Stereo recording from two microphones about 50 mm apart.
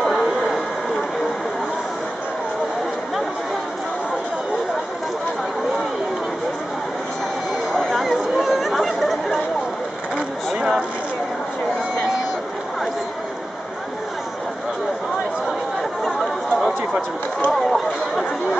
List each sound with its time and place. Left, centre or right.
0.0 s a sound: centre
7.9 s chatter: centre
10.1 s vehicle: centre
16.0 s chatter: centre